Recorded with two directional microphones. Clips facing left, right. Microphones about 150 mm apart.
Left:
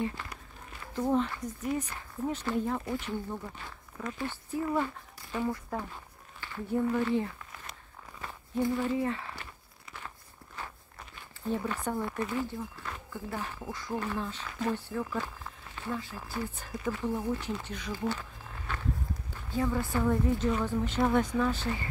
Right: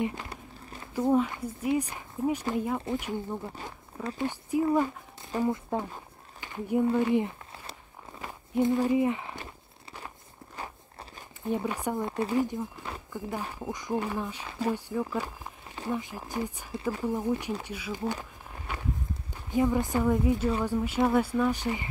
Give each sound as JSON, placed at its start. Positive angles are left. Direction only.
{"t": 0.0, "sound": "speech", "side_deg": -20}
{"t": 1.1, "sound": "speech", "side_deg": -10}
{"t": 8.2, "sound": "a sound", "side_deg": -20}
{"t": 8.8, "sound": "speech", "side_deg": -15}
{"t": 10.5, "sound": "walk", "side_deg": -35}
{"t": 11.4, "sound": "speech", "side_deg": -15}
{"t": 12.2, "sound": "speech", "side_deg": -35}
{"t": 12.4, "sound": "speech", "side_deg": -15}
{"t": 16.7, "sound": "speech", "side_deg": -30}
{"t": 17.0, "sound": "speech", "side_deg": -15}
{"t": 18.7, "sound": "walk", "side_deg": -10}
{"t": 19.3, "sound": "speech", "side_deg": -15}